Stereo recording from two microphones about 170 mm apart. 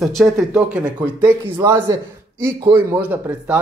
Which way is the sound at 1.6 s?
15° right (ahead or behind).